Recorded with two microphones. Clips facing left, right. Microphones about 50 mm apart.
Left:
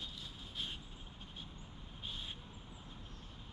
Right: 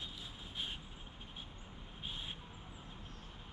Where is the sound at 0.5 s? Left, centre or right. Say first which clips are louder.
Right 1 dB; centre.